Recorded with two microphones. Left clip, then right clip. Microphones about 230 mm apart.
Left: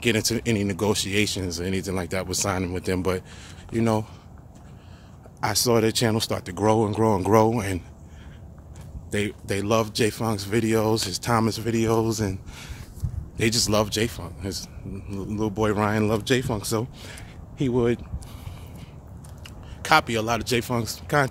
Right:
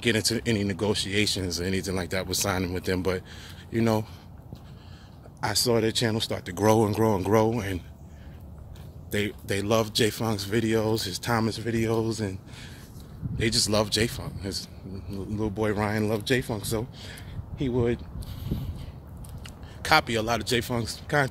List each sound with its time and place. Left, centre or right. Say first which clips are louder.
0.0 s speech: left 2 dB; centre
5.4 s speech: left 3 dB; centre
6.5 s speech: even; centre
9.1 s speech: left 2 dB; centre
19.4 s speech: even; centre